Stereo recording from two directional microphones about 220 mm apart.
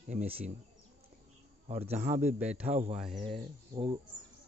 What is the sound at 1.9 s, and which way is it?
Speech, 35° right (ahead or behind).